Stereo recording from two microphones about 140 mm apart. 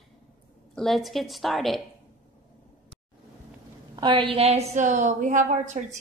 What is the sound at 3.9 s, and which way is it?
A woman's voice, 35° right (ahead or behind).